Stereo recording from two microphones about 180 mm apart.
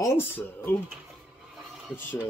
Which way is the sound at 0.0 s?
15° left (ahead or behind).